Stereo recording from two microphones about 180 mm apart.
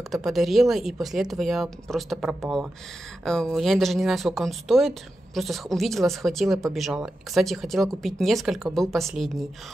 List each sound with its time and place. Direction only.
0.1 s speech: centre (ahead or behind)